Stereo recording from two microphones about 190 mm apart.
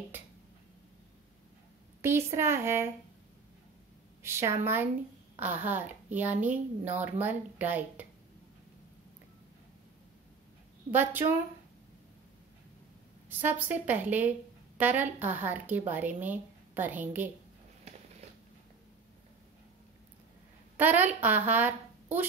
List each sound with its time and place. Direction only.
2.0 s speech: 15° right (ahead or behind)
4.2 s a woman's voice: 15° right (ahead or behind)
5.7 s speech: 10° right (ahead or behind)
10.9 s speech: 10° right (ahead or behind)
13.3 s speech: 10° right (ahead or behind)
20.7 s a woman's voice: 10° right (ahead or behind)